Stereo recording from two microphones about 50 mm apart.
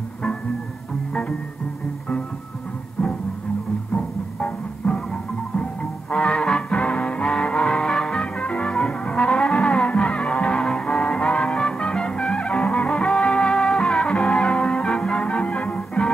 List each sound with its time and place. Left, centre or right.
3.0 s music: left
8.4 s music: left